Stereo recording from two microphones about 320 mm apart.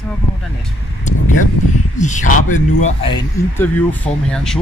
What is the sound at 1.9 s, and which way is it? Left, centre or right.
Speech, left.